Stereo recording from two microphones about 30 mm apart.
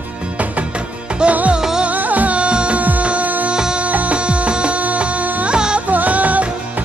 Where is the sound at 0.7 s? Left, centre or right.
Right.